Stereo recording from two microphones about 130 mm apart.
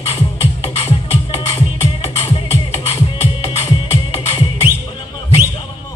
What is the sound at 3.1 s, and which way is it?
Music, 50° left (ahead or behind).